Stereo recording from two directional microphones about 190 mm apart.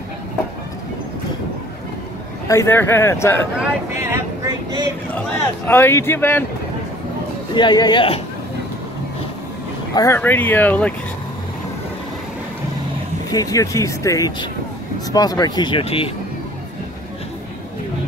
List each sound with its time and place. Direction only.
2.4 s speech: 15° left (ahead or behind)
4.0 s a sound: 15° right (ahead or behind)
5.7 s speech: 10° left (ahead or behind)
7.5 s speech: 20° left (ahead or behind)
9.9 s speech: 15° left (ahead or behind)
13.3 s speech: 20° left (ahead or behind)